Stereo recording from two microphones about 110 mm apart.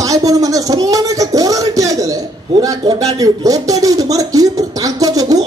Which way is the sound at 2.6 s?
35° right (ahead or behind).